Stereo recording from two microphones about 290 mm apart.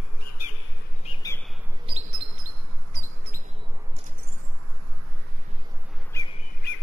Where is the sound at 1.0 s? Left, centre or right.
Centre.